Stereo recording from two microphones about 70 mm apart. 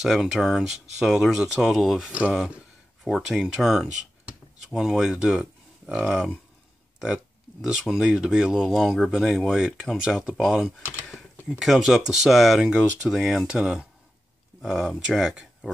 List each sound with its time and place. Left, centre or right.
0.0 s speech: centre
4.3 s speech: centre
7.5 s a sound: left
7.8 s speech: centre
11.1 s typing: centre
11.6 s speech: centre
14.6 s speech: centre